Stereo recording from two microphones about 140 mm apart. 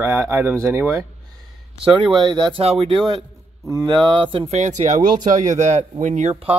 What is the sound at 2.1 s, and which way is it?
Mantra, 30° right (ahead or behind).